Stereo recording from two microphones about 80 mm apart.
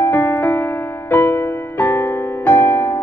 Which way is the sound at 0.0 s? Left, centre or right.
Left.